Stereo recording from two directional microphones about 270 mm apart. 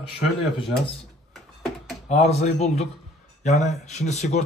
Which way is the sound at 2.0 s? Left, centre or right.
Left.